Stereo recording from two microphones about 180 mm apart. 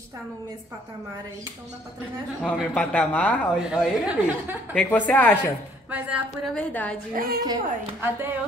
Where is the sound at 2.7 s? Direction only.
5° left (ahead or behind).